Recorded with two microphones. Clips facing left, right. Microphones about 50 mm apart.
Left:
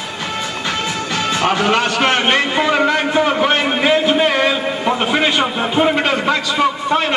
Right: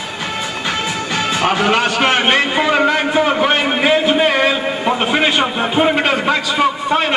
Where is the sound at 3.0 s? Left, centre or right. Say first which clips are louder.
Right 1 dB; centre.